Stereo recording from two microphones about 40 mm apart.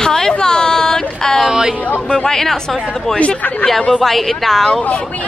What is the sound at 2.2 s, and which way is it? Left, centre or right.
Speech, centre.